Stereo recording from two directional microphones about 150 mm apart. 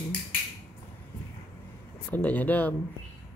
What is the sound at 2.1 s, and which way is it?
Speech, 10° left (ahead or behind).